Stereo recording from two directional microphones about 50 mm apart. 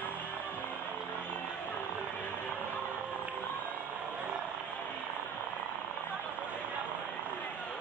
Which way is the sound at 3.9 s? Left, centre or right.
Right.